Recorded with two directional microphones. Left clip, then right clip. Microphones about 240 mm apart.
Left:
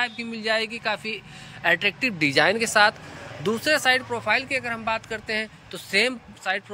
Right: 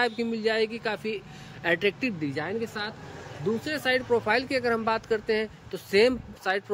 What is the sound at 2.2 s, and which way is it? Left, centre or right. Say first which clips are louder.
Speech: left 11 dB; left.